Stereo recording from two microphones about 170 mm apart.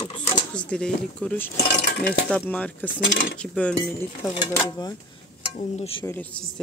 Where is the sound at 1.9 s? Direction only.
70° left (ahead or behind).